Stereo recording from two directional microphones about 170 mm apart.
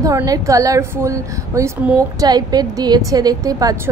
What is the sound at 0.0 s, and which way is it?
A woman's voice, 20° right (ahead or behind).